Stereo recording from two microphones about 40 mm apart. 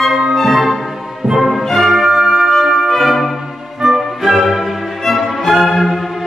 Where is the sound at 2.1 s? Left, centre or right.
Centre.